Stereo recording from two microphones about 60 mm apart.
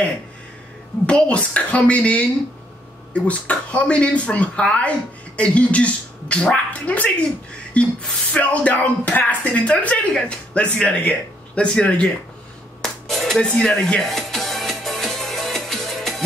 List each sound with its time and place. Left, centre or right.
1.0 s a child's voice: centre
12.8 s music: centre
13.6 s speech: centre
14.1 s music: centre